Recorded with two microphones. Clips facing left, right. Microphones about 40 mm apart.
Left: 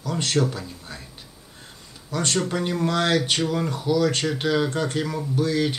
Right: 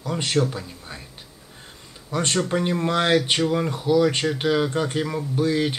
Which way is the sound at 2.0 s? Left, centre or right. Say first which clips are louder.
Right 1 dB; right.